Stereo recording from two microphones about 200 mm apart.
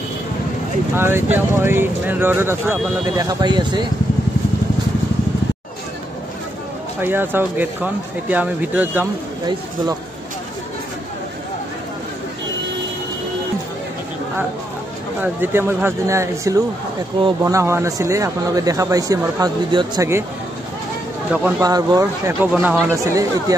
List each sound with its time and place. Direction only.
0.9 s speech: 10° right (ahead or behind)
7.0 s speech: 10° right (ahead or behind)
15.2 s speech: 10° right (ahead or behind)
21.3 s speech: 5° right (ahead or behind)
21.5 s speech: 20° right (ahead or behind)